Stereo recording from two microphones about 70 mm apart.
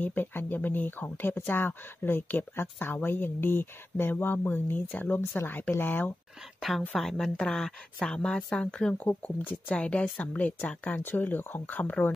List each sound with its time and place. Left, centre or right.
0.0 s speech: left
6.7 s a woman's voice: centre; by 12.1 s left